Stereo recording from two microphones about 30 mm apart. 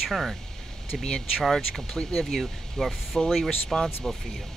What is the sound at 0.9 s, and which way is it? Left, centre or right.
Speech, left.